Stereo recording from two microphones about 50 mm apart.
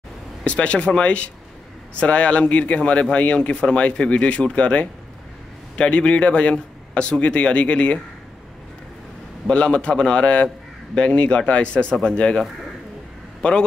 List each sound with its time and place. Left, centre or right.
0.4 s a man's voice: left
9.5 s a man's voice: left